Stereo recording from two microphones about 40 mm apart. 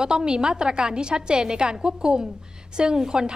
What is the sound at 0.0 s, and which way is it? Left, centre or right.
A woman's voice, centre.